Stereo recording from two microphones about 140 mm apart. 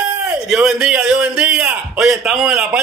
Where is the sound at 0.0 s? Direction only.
5° right (ahead or behind).